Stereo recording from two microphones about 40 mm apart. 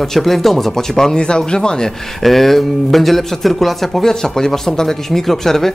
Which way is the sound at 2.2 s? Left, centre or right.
Centre.